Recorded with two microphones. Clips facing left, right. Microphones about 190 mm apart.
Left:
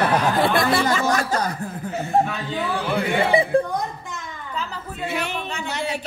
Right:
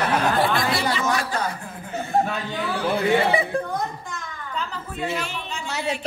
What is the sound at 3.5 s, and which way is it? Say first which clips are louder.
Speech: left 7 dB; 30° left (ahead or behind).